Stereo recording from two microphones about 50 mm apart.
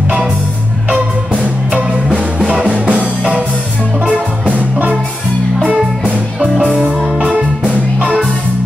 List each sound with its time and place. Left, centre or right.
0.8 s music: right
7.2 s music: centre